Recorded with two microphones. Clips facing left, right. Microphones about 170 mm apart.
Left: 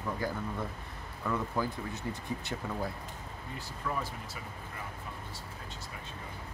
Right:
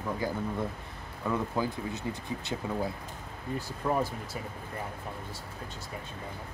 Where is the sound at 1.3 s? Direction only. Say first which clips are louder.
Right 2 dB; 15° right (ahead or behind).